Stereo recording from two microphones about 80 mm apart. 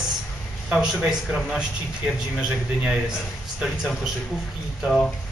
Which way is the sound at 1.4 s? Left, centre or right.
Centre.